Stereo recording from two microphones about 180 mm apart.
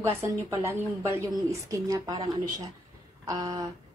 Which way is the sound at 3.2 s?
20° right (ahead or behind).